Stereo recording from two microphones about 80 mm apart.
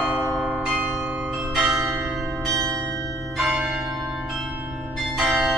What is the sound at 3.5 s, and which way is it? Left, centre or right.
Change ringing, centre.